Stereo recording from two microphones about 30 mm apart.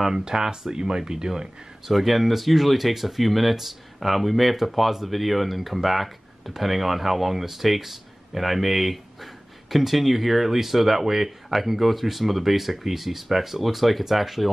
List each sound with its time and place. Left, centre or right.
0.2 s speech: right
1.9 s speech: centre